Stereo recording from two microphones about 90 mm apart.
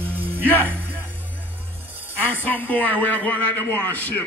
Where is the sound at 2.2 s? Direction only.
20° left (ahead or behind).